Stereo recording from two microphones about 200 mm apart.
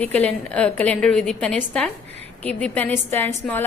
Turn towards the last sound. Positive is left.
turn(degrees=10)  # may be behind; listen again after turning